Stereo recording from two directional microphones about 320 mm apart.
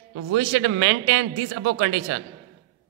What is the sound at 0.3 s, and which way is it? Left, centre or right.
A man's voice, right.